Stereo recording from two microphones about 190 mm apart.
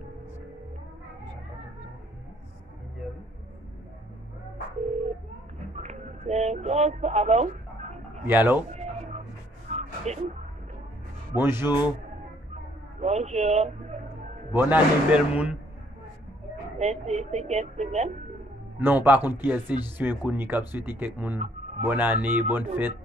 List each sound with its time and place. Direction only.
4.8 s telephone dialing: 35° right (ahead or behind)
5.8 s a sound: 35° right (ahead or behind)
8.3 s speech: 10° right (ahead or behind)
9.7 s a sound: 35° right (ahead or behind)
11.3 s speech: 10° right (ahead or behind)
13.0 s a sound: 35° right (ahead or behind)
14.5 s speech: 10° right (ahead or behind)
16.7 s speech: 35° right (ahead or behind)
18.8 s speech: 10° right (ahead or behind)